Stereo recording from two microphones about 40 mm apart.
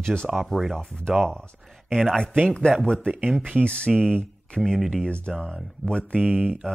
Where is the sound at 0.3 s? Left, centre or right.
Centre.